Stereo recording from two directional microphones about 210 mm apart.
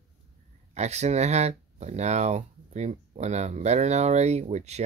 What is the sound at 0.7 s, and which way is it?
Speech, 30° right (ahead or behind).